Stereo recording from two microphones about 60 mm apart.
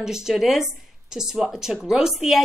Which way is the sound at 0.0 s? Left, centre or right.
Centre.